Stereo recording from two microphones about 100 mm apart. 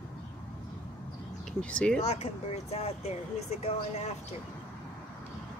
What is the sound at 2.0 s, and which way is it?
Speech, 90° left.